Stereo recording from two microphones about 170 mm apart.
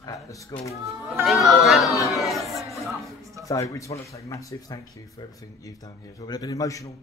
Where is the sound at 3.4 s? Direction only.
20° left (ahead or behind).